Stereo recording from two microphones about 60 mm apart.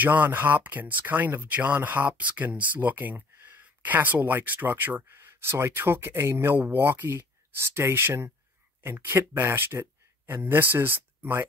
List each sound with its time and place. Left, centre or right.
0.0 s speech: right